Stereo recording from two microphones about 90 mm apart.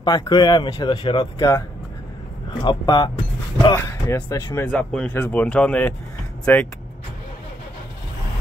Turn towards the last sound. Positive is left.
turn(degrees=20)  # may be behind; listen again after turning